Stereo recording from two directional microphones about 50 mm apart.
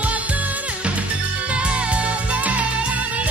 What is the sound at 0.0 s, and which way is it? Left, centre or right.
Music, right.